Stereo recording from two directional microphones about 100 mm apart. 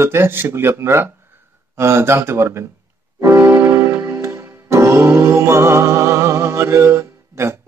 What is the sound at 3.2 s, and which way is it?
Music, 30° right (ahead or behind).